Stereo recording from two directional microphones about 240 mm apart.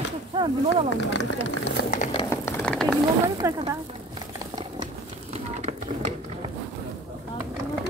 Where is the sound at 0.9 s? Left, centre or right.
Left.